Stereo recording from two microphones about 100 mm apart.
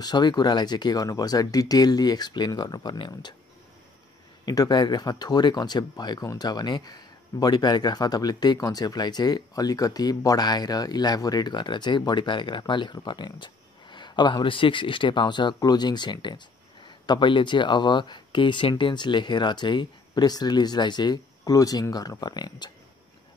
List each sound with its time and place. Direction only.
0.0 s speech: 45° left (ahead or behind)
4.5 s speech: 45° left (ahead or behind)